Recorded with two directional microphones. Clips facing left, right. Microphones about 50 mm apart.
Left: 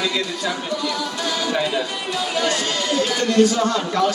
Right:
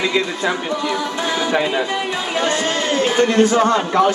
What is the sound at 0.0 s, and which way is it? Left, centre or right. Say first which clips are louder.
Speech: right 4 dB; right.